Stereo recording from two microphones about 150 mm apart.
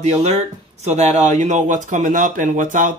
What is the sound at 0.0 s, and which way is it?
Speech, 50° right (ahead or behind).